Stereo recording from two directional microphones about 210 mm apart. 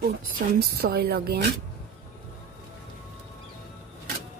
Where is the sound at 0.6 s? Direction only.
50° right (ahead or behind).